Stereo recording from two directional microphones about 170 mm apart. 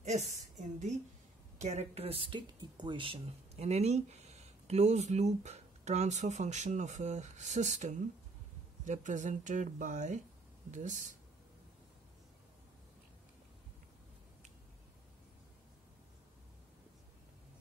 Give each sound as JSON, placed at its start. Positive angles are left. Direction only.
{"t": 0.6, "sound": "speech", "side_deg": -40}